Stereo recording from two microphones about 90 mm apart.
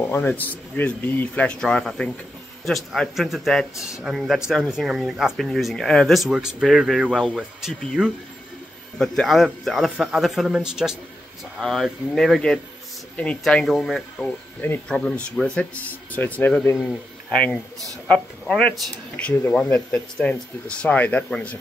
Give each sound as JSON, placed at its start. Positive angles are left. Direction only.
{"t": 0.0, "sound": "speech", "side_deg": 25}
{"t": 8.9, "sound": "speech", "side_deg": 5}